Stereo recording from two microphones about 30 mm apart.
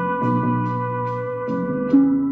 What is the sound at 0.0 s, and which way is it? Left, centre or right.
Music, centre.